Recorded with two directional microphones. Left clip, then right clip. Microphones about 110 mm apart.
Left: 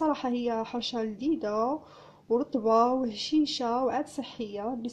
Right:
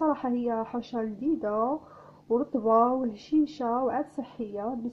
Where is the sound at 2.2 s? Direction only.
5° left (ahead or behind).